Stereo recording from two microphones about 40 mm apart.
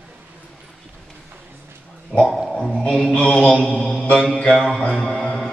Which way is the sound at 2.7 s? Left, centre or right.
Centre.